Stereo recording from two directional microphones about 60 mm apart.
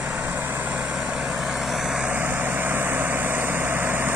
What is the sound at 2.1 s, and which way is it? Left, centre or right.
Vehicle, right.